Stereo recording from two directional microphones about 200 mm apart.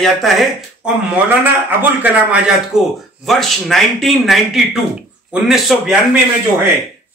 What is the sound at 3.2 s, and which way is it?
A man's voice, centre (ahead or behind).